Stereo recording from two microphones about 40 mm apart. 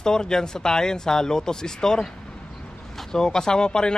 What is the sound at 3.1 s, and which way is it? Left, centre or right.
Speech, centre.